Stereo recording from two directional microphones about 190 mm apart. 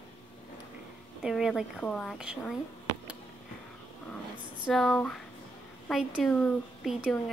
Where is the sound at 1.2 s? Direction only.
Centre (ahead or behind).